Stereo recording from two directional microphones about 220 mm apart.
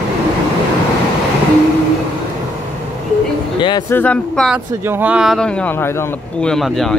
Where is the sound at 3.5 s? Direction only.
20° left (ahead or behind).